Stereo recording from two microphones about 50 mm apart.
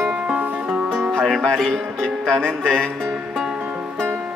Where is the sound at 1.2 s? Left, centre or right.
Centre.